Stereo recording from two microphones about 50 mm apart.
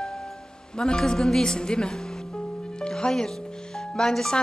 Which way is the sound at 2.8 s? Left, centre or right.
Centre.